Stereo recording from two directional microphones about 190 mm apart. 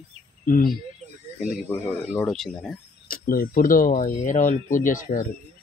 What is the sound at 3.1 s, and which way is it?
Speech, 50° left (ahead or behind).